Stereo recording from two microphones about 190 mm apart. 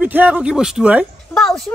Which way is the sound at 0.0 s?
10° right (ahead or behind).